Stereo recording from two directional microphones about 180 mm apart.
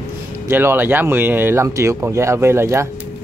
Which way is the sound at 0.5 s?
10° right (ahead or behind).